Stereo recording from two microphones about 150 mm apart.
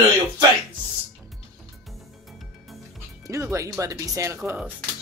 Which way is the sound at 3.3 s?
20° right (ahead or behind).